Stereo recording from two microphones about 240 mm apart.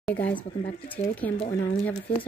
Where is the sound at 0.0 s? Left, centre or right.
Centre.